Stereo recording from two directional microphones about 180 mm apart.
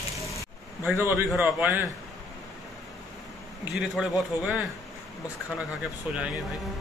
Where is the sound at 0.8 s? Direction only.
10° right (ahead or behind).